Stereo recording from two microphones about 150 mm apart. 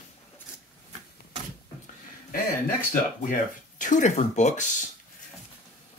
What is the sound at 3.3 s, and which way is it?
Speech, 60° left (ahead or behind).